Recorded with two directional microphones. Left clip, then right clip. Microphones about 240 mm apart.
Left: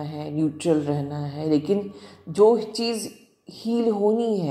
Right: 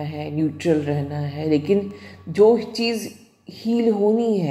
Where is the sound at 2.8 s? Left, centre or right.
Left.